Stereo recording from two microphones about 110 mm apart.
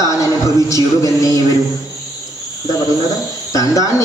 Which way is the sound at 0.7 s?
30° left (ahead or behind).